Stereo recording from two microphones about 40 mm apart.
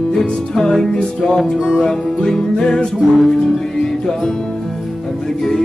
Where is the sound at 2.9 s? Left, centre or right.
Centre.